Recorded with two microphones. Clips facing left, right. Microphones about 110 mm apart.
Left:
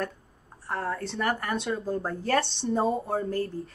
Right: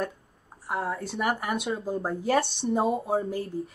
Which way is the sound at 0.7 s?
5° right (ahead or behind).